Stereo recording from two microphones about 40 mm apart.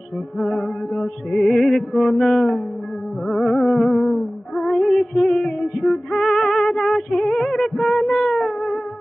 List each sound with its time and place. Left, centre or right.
0.4 s music: centre